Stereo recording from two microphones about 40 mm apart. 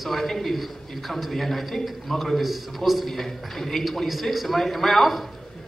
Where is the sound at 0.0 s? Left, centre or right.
Centre.